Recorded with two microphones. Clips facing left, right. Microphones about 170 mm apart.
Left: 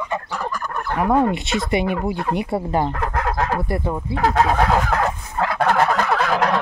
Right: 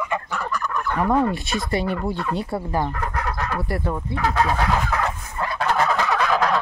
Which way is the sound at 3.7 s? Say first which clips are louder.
Left 2 dB; 15° left (ahead or behind).